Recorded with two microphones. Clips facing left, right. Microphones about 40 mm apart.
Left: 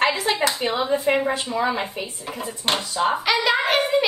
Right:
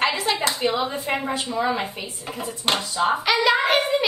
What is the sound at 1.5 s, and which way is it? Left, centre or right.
Speech, centre.